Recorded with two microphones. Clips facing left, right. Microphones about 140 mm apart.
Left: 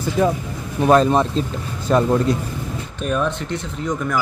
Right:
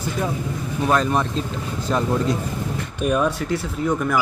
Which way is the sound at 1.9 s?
55° left (ahead or behind).